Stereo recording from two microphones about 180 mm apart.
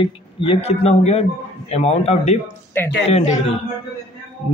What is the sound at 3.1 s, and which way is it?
Speech, 40° left (ahead or behind).